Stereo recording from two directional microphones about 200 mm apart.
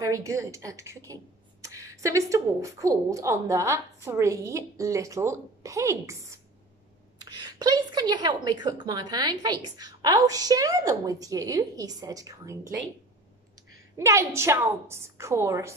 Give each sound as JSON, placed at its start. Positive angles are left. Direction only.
{"t": 0.0, "sound": "speech", "side_deg": -15}
{"t": 13.9, "sound": "speech", "side_deg": -15}